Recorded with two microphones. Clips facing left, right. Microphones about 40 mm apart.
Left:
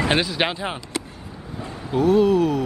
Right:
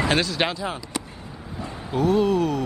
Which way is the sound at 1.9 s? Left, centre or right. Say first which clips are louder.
Left 3 dB; centre.